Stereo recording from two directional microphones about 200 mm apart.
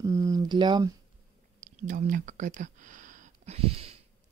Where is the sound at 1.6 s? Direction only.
40° right (ahead or behind).